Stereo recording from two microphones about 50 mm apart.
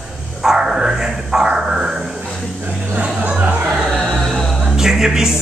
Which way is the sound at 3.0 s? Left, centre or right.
Right.